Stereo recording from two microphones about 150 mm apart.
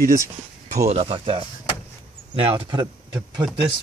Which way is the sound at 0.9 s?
40° right (ahead or behind).